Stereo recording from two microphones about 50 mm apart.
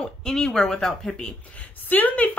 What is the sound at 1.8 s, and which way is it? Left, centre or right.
Speech, left.